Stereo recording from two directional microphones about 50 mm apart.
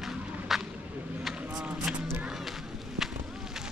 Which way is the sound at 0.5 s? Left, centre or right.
Centre.